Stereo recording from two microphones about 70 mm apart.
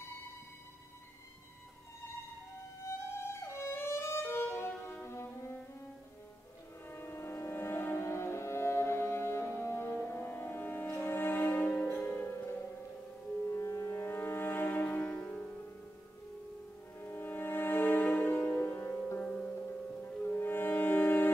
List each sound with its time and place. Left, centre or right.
2.8 s music: left
6.9 s music: left
13.5 s music: left; by 15.5 s centre
17.0 s music: left
20.2 s music: left